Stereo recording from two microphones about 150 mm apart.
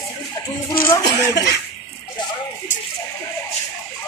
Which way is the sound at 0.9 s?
25° left (ahead or behind).